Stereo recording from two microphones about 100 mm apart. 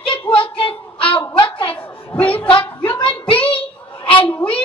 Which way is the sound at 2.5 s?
55° left (ahead or behind).